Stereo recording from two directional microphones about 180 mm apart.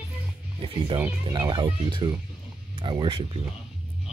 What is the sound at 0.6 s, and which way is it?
Speech, 30° right (ahead or behind).